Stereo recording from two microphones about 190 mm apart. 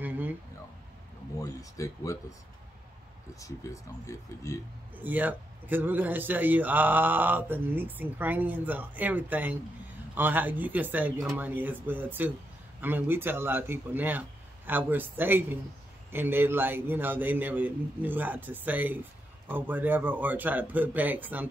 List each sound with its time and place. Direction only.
0.0 s a sound: 10° right (ahead or behind)
1.4 s speech: 15° left (ahead or behind)
3.6 s speech: 15° left (ahead or behind)
5.0 s speech: 10° right (ahead or behind)